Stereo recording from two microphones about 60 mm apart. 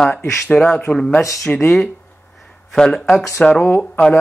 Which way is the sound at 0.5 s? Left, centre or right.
Centre.